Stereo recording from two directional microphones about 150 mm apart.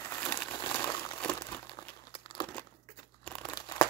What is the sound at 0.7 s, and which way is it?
Crumpling, 20° left (ahead or behind).